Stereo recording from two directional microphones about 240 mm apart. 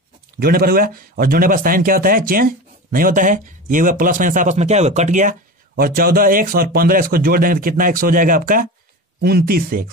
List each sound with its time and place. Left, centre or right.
0.4 s speech: right